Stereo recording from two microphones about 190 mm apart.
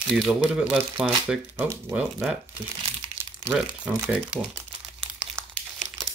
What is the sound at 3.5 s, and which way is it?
Speech, 5° right (ahead or behind).